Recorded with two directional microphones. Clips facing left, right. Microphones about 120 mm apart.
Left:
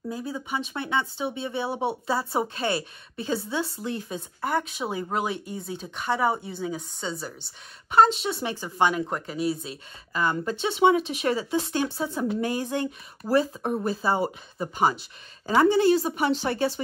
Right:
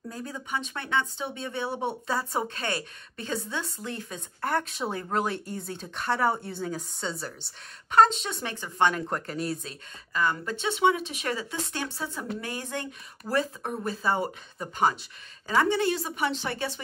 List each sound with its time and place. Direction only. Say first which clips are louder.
0.1 s speech: left 3 dB; 5° left (ahead or behind)
4.4 s speech: left 1 dB; 5° left (ahead or behind)
10.2 s speech: left 3 dB; 25° left (ahead or behind)
13.2 s speech: left 5 dB; 25° left (ahead or behind)
13.8 s speech: left 1 dB; 10° left (ahead or behind)
15.4 s a woman's voice: left 5 dB; 30° left (ahead or behind)